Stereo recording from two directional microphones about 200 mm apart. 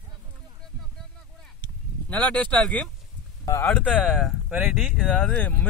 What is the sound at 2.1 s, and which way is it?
Speech, 5° left (ahead or behind).